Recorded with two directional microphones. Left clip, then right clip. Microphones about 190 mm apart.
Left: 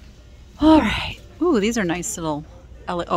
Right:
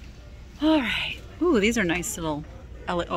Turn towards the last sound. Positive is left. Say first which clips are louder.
# left 2 dB
turn(degrees=15)  # may be behind; listen again after turning